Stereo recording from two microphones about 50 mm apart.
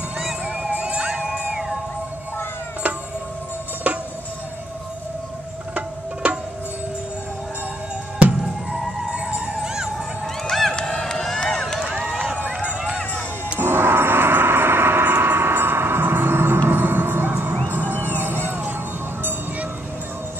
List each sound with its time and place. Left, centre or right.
0.5 s music: right
3.9 s music: right
6.2 s music: right
8.4 s music: centre
9.1 s a sound: right
9.6 s a sound: centre
10.5 s run: centre
11.0 s a sound: centre
12.1 s run: centre
13.6 s music: right